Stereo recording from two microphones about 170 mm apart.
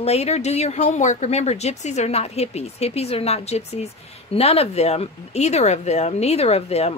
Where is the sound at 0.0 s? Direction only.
40° left (ahead or behind).